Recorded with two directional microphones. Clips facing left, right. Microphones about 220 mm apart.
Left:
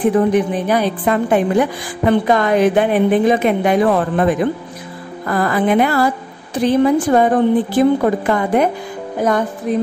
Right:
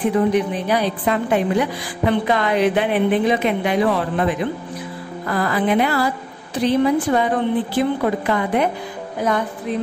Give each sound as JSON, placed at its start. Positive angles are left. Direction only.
{"t": 0.3, "sound": "a woman's voice", "side_deg": 50}